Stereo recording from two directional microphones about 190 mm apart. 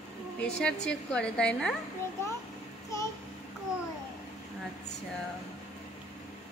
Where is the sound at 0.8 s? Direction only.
5° left (ahead or behind).